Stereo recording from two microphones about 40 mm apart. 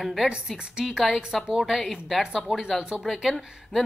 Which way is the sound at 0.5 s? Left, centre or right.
Centre.